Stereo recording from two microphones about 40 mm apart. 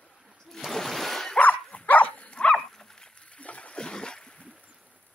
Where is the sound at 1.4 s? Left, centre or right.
Left.